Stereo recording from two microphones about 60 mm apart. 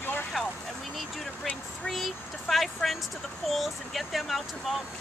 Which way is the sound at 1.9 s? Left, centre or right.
Centre.